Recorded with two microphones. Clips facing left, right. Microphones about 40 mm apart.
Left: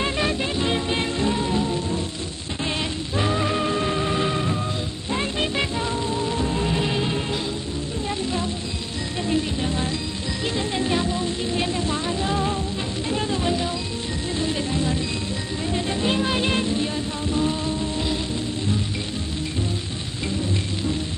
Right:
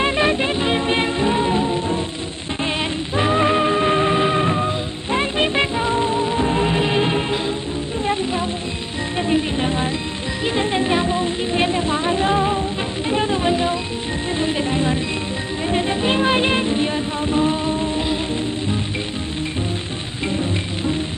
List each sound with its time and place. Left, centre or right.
0.0 s music: right
3.2 s music: right